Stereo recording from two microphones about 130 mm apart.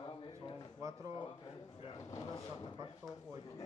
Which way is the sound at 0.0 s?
40° left (ahead or behind).